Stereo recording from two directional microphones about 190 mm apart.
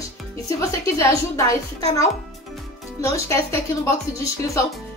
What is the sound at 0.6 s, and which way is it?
A woman's voice, 15° left (ahead or behind).